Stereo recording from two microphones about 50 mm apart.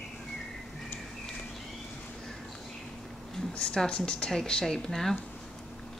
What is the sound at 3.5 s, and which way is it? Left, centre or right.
Speech, centre.